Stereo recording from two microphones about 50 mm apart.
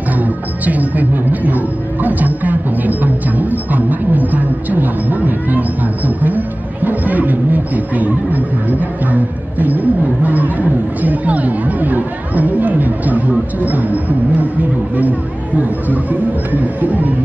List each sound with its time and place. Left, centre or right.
0.2 s music: right
13.7 s a sound: right
15.0 s music: right